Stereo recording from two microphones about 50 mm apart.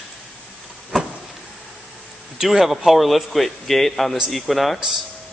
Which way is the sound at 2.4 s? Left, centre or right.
Centre.